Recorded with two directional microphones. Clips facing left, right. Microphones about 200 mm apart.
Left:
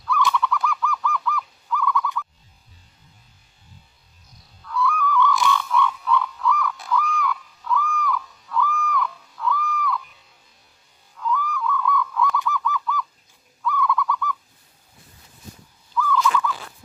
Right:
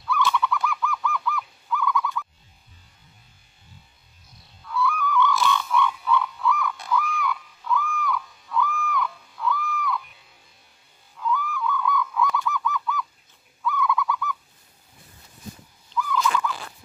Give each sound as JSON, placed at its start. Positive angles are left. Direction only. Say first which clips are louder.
{"t": 0.3, "sound": "goose", "louder": "left 1 dB", "side_deg": 0}
{"t": 4.6, "sound": "a sound", "louder": "left 2 dB", "side_deg": 0}
{"t": 5.4, "sound": "frog", "louder": "left 1 dB", "side_deg": 0}
{"t": 11.1, "sound": "goose", "louder": "left 1 dB", "side_deg": 0}
{"t": 13.6, "sound": "owl", "louder": "left 1 dB", "side_deg": 0}
{"t": 15.9, "sound": "fowl", "louder": "left 4 dB", "side_deg": -15}